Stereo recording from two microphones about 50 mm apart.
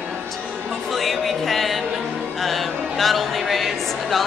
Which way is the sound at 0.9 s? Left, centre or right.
Centre.